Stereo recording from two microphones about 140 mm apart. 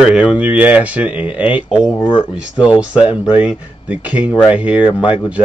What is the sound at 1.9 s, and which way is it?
Speech, 15° left (ahead or behind).